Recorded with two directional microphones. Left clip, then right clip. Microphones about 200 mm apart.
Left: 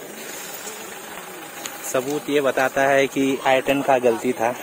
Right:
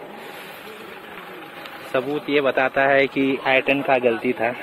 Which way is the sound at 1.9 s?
10° left (ahead or behind).